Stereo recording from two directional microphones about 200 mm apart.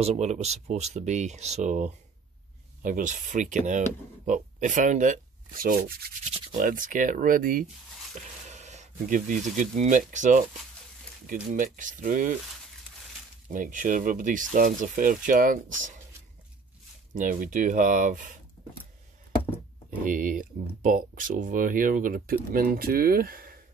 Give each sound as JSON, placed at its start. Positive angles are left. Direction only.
{"t": 0.0, "sound": "speech", "side_deg": -35}
{"t": 11.5, "sound": "speech", "side_deg": -40}
{"t": 13.5, "sound": "speech", "side_deg": -40}
{"t": 17.1, "sound": "speech", "side_deg": -45}
{"t": 20.1, "sound": "speech", "side_deg": -40}